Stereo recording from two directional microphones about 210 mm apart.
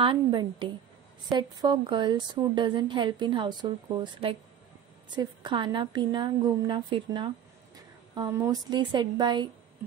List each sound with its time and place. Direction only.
0.0 s a woman's voice: 20° right (ahead or behind)